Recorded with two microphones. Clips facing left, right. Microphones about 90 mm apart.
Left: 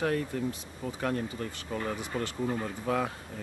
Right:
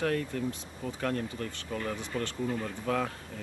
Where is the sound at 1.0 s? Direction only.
10° left (ahead or behind).